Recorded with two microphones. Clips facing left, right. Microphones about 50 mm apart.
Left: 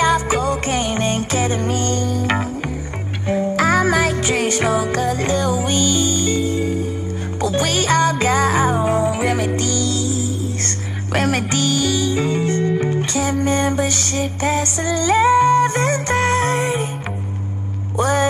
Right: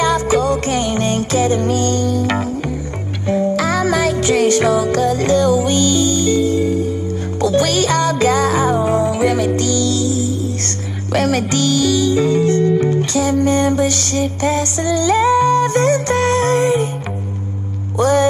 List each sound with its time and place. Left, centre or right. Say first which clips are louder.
0.0 s music: right 2 dB; left
3.5 s music: even; left
17.9 s a sound: right 4 dB; left